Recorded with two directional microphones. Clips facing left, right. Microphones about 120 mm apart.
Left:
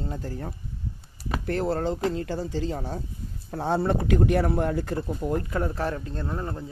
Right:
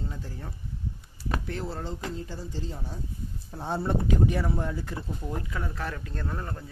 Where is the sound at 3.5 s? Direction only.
85° left; by 6.7 s 25° left (ahead or behind).